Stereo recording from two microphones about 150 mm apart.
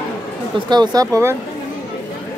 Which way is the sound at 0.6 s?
30° right (ahead or behind).